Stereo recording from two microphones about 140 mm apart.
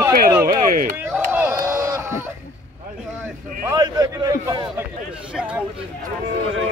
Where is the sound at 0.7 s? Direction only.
80° right.